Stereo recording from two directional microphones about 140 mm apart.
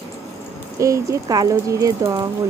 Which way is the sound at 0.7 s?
20° right (ahead or behind).